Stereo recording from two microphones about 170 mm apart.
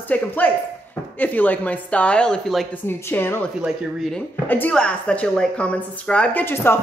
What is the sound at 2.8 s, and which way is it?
Speech, 10° left (ahead or behind).